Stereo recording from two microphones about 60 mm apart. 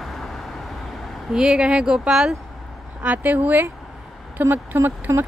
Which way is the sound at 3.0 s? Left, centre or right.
Right.